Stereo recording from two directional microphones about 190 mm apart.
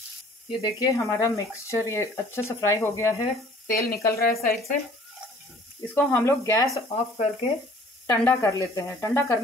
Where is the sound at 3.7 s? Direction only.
50° left (ahead or behind).